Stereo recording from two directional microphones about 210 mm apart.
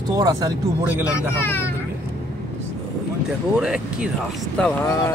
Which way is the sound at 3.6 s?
5° right (ahead or behind).